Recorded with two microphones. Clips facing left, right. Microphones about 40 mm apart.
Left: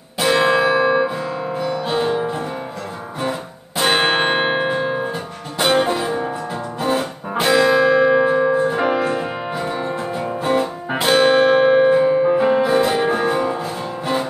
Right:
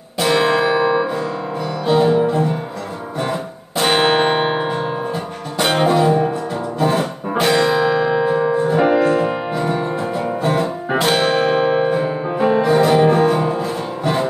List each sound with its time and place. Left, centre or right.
0.2 s music: centre
4.3 s a sound: centre
5.1 s music: centre; by 11.9 s left
11.9 s music: centre